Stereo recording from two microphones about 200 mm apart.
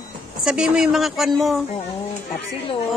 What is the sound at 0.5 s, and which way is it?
Speech, 5° right (ahead or behind).